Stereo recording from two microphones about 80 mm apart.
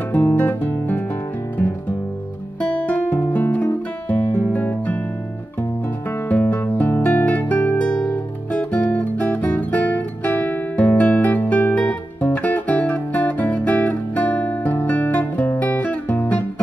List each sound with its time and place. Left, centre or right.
0.1 s guitar: left
2.6 s guitar: centre
4.1 s music: left
15.6 s guitar: left